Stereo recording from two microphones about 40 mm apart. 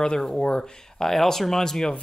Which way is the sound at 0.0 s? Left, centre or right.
Centre.